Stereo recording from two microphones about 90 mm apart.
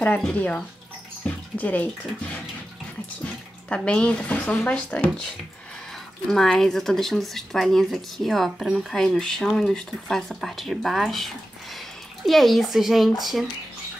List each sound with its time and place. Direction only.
0.3 s speech: 15° left (ahead or behind)
1.2 s a sound: 15° left (ahead or behind)
1.6 s speech: 20° left (ahead or behind)
3.6 s speech: 10° left (ahead or behind)
6.3 s speech: 5° left (ahead or behind)
12.3 s speech: centre (ahead or behind)